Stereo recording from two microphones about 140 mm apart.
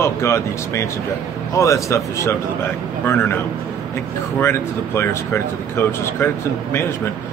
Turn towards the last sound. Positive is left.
turn(degrees=15)  # may be behind; listen again after turning